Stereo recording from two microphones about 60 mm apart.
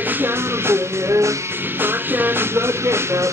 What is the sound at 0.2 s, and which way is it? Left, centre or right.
Music, right.